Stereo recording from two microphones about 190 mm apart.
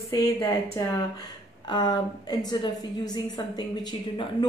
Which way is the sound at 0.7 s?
20° left (ahead or behind).